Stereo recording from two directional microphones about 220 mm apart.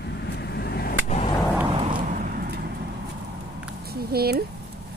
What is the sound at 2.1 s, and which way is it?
Vehicle, 45° right (ahead or behind).